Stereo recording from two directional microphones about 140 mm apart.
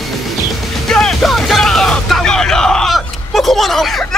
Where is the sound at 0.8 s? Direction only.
5° left (ahead or behind).